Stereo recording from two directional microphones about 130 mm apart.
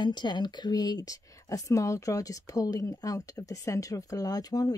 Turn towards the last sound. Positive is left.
turn(degrees=30)  # may be behind; listen again after turning